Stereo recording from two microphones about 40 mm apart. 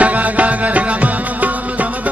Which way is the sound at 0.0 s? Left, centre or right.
Right.